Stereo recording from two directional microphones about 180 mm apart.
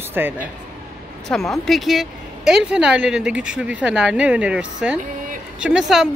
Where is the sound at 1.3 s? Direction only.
Centre (ahead or behind).